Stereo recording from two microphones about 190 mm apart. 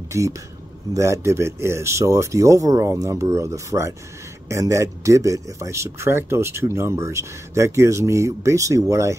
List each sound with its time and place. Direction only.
0.1 s speech: 15° right (ahead or behind)